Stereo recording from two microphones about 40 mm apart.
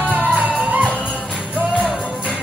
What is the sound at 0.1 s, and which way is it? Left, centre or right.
Music, right.